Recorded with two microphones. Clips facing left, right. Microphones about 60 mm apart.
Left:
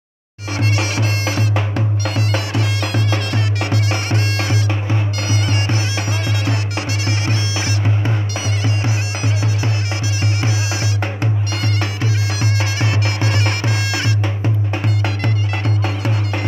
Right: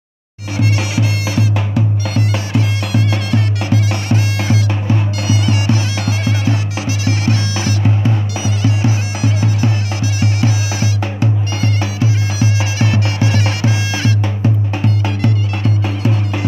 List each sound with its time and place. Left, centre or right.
0.6 s music: left
4.8 s bagpipes: left
15.0 s music: left